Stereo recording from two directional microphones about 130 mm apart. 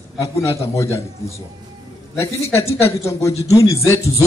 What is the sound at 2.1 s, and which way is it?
A man's voice, 20° left (ahead or behind).